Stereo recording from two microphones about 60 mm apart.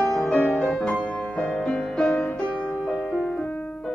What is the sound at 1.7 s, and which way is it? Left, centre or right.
Music, centre.